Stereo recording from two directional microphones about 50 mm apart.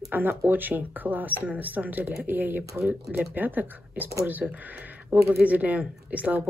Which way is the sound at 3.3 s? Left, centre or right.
Right.